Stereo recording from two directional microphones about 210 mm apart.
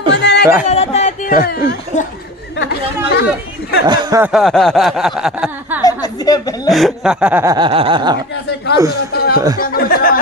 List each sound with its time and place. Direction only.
0.1 s a sound: 55° left (ahead or behind)
0.7 s a sound: 30° left (ahead or behind)
2.6 s speech: 50° left (ahead or behind)
3.8 s snicker: 20° right (ahead or behind)
4.2 s speech: centre (ahead or behind)
5.8 s a woman's voice: 15° left (ahead or behind)
6.7 s speech: centre (ahead or behind)
7.5 s snicker: 25° right (ahead or behind)
9.1 s a sound: 45° left (ahead or behind)